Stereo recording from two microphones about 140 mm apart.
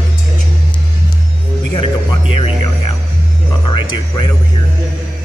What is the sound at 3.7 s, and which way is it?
Music, 35° left (ahead or behind).